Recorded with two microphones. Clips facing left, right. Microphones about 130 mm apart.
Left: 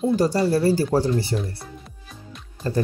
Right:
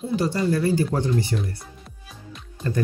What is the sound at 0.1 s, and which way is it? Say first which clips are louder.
Speech: even; 40° left (ahead or behind).